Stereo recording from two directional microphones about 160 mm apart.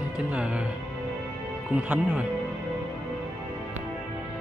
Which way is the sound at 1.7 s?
5° right (ahead or behind).